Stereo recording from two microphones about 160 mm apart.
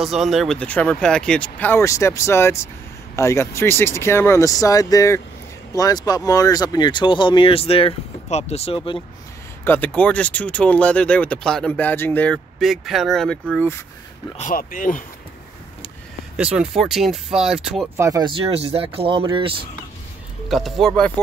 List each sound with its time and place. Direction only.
0.0 s speech: centre (ahead or behind); by 9.0 s 35° left (ahead or behind)
9.7 s speech: 10° left (ahead or behind)
14.5 s speech: 60° left (ahead or behind)
16.3 s speech: 5° right (ahead or behind)
17.9 s speech: 20° right (ahead or behind)
18.5 s speech: 40° right (ahead or behind)
20.4 s speech: centre (ahead or behind)